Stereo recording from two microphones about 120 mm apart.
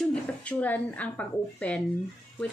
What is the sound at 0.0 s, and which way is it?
A woman's voice, 10° left (ahead or behind).